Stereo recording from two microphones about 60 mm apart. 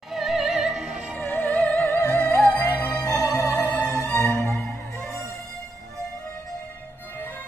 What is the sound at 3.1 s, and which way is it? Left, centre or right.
Music, left.